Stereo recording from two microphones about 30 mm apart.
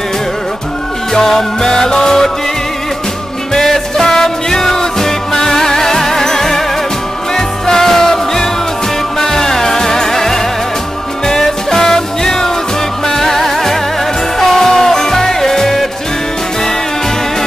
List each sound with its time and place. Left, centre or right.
1.1 s music: centre
3.5 s music: centre